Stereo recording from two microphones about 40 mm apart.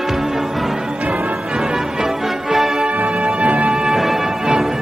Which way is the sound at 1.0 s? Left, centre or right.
Right.